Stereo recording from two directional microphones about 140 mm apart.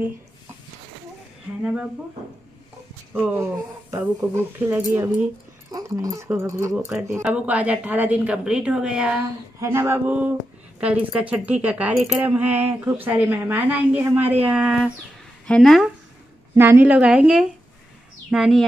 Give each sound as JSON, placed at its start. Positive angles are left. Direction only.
{"t": 1.6, "sound": "speech", "side_deg": -5}
{"t": 3.9, "sound": "speech", "side_deg": -15}
{"t": 9.6, "sound": "speech", "side_deg": -20}
{"t": 15.4, "sound": "a woman's voice", "side_deg": 5}
{"t": 16.5, "sound": "a woman's voice", "side_deg": -15}